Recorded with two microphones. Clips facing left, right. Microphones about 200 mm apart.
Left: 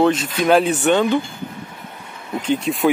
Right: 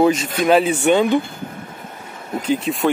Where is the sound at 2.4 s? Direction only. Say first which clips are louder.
Left 1 dB; 5° right (ahead or behind).